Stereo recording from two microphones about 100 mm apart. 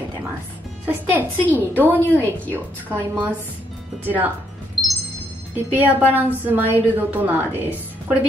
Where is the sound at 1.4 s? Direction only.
15° left (ahead or behind).